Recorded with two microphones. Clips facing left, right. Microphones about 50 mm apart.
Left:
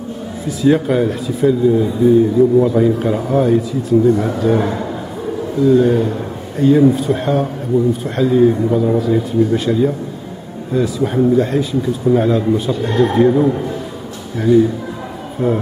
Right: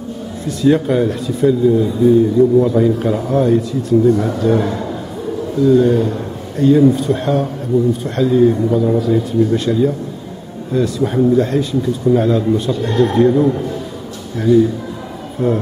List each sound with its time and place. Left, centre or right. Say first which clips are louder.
0.5 s speech: even; centre